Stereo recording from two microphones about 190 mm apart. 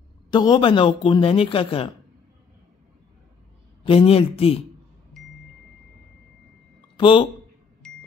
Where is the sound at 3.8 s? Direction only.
30° left (ahead or behind).